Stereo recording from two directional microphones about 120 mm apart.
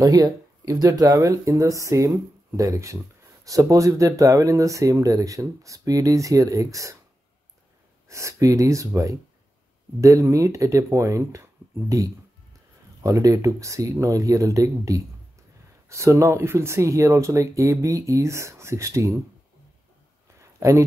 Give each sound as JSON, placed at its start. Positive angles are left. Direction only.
{"t": 0.0, "sound": "speech", "side_deg": -30}
{"t": 8.1, "sound": "speech", "side_deg": -25}
{"t": 20.3, "sound": "a sound", "side_deg": -25}